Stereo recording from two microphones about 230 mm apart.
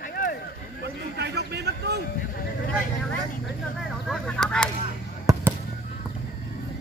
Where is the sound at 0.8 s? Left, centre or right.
Right.